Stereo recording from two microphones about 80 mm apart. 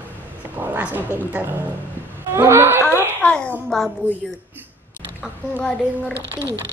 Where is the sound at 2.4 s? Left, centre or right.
Right.